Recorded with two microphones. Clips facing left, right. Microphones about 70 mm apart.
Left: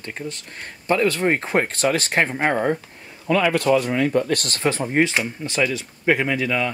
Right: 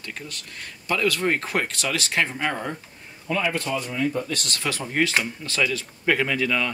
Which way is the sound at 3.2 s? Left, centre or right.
Left.